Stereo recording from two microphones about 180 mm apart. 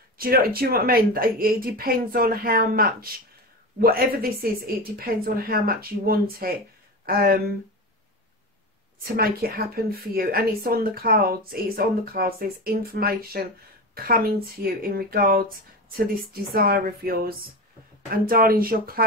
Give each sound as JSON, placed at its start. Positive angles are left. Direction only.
{"t": 0.2, "sound": "a woman's voice", "side_deg": -55}
{"t": 9.0, "sound": "a woman's voice", "side_deg": -55}